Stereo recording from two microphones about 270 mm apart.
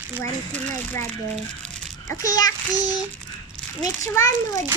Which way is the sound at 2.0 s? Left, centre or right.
Centre.